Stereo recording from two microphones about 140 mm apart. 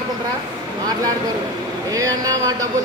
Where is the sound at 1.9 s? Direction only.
25° right (ahead or behind).